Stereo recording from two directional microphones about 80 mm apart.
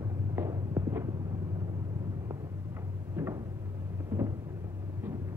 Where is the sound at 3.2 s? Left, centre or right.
Right.